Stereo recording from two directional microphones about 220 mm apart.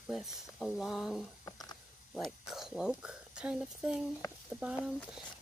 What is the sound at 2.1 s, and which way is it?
Speech, centre (ahead or behind).